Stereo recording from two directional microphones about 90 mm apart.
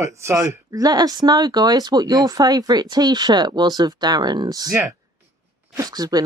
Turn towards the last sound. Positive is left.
turn(degrees=-45)  # may be behind; listen again after turning